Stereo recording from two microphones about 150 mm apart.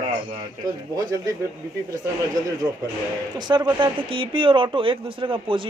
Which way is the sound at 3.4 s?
30° right (ahead or behind).